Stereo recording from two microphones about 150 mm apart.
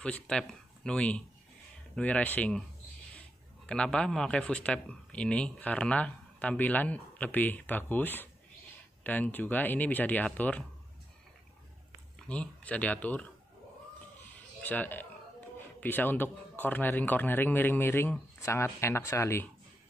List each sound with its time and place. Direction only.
0.0 s speech: 5° left (ahead or behind)
3.6 s speech: 5° left (ahead or behind)
12.2 s speech: 10° left (ahead or behind)
14.2 s a sound: 10° left (ahead or behind)
15.8 s speech: 10° left (ahead or behind)